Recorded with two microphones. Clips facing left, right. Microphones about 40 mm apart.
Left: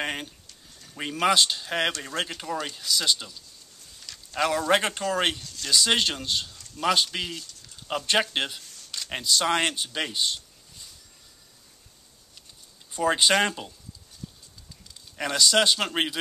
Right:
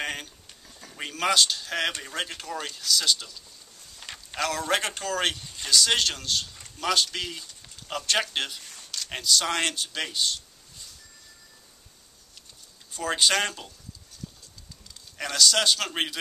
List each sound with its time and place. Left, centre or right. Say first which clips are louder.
0.0 s a sound: left 2 dB; centre
0.9 s speech: left 2 dB; centre
4.0 s a sound: right 4 dB; right
4.4 s a man's voice: left 4 dB; left
5.4 s speech: even; right
5.7 s a man's voice: even; centre
12.9 s speech: left 3 dB; centre
15.1 s speech: left 2 dB; centre